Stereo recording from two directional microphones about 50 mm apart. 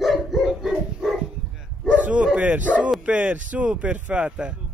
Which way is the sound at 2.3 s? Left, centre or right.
Right.